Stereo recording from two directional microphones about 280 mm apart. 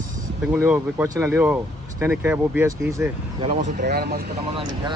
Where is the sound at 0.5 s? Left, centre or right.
Centre.